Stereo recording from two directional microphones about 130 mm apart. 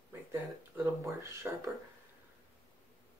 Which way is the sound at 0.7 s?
15° right (ahead or behind).